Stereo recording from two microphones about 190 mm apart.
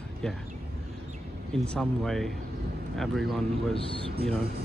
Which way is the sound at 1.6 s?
5° left (ahead or behind).